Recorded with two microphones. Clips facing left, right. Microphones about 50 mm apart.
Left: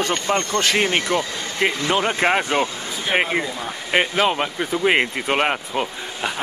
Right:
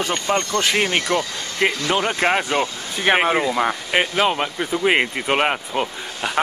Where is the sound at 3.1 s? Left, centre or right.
Right.